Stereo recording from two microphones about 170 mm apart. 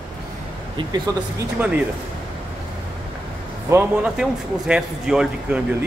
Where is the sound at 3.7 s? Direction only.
5° right (ahead or behind).